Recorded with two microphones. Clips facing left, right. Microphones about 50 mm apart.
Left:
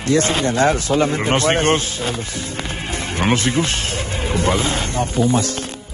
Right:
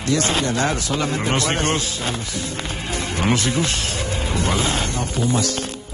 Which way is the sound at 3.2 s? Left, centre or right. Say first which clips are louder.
Left 3 dB; left.